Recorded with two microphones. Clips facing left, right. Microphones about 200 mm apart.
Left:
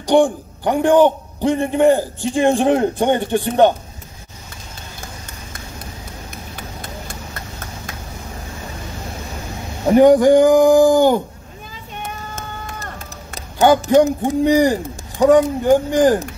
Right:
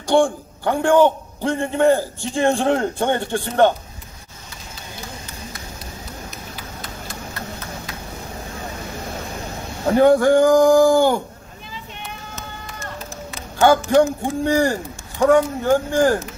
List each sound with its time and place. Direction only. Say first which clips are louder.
0.0 s a man's voice: left 3 dB; 15° left (ahead or behind)
9.8 s a man's voice: left 4 dB; 15° left (ahead or behind)
11.9 s run: left 8 dB; 50° left (ahead or behind)
13.6 s a man's voice: left 2 dB; 15° left (ahead or behind)